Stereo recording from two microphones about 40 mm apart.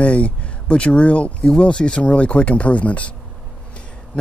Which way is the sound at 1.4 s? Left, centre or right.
Left.